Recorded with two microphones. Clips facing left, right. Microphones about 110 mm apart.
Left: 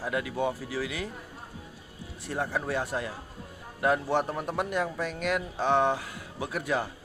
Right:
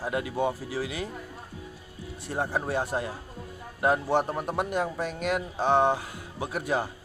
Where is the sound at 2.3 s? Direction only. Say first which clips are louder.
Right 2 dB; 30° right (ahead or behind).